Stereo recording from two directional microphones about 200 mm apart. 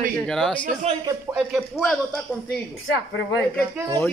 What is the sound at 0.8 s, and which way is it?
Speech, 30° right (ahead or behind).